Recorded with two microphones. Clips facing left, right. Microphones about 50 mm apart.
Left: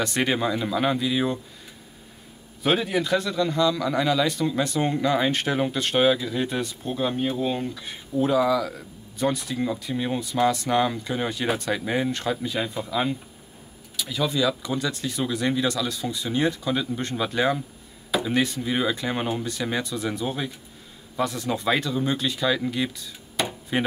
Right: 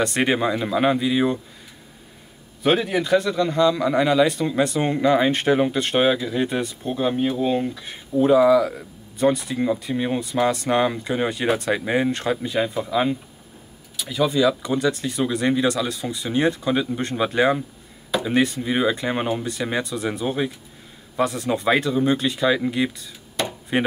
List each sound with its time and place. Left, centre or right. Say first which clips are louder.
0.0 s speech: right 3 dB; centre
2.6 s speech: right 3 dB; centre
8.2 s speech: right 6 dB; centre
11.7 s speech: right 4 dB; centre
21.2 s speech: right 4 dB; centre
23.4 s speech: right 1 dB; centre